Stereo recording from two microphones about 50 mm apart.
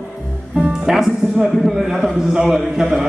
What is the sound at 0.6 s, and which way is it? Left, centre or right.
A man's voice, centre.